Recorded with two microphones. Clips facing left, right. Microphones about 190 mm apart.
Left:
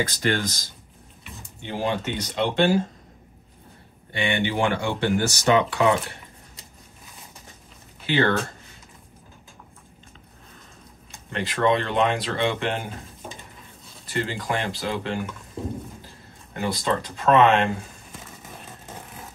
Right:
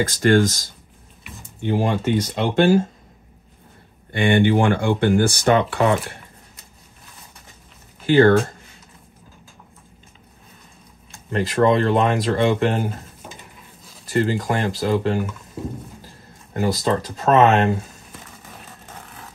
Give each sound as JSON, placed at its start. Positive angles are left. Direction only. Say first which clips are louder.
{"t": 0.0, "sound": "speech", "louder": "right 8 dB", "side_deg": -45}
{"t": 4.1, "sound": "speech", "louder": "right 8 dB", "side_deg": -50}
{"t": 8.1, "sound": "speech", "louder": "right 8 dB", "side_deg": -45}
{"t": 11.3, "sound": "speech", "louder": "right 5 dB", "side_deg": -40}
{"t": 14.0, "sound": "speech", "louder": "right 7 dB", "side_deg": -40}
{"t": 16.5, "sound": "speech", "louder": "right 5 dB", "side_deg": -40}